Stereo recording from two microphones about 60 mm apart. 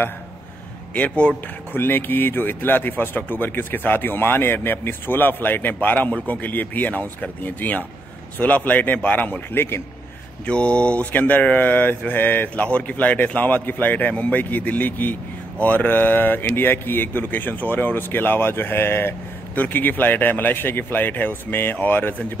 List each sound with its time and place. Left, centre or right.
0.9 s speech: left
1.8 s speech: left
10.4 s speech: centre